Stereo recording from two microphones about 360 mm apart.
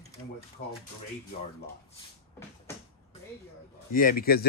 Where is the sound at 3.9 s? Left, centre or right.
Left.